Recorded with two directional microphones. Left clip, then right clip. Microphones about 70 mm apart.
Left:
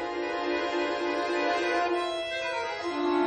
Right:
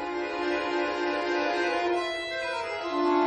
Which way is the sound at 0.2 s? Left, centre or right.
Centre.